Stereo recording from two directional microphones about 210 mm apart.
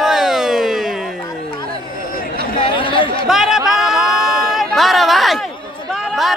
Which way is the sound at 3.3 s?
Centre (ahead or behind).